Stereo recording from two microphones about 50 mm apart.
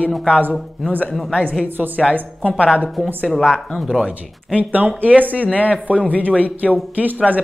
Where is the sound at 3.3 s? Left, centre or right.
Centre.